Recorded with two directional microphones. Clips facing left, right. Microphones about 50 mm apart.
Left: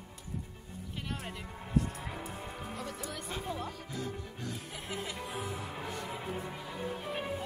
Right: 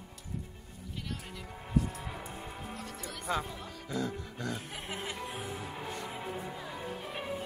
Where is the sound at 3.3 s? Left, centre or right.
Right.